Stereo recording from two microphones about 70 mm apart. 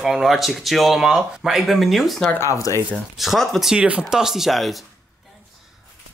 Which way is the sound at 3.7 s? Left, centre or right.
Centre.